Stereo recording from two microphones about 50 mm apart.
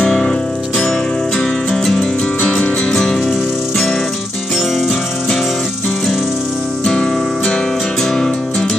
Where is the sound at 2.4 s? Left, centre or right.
Left.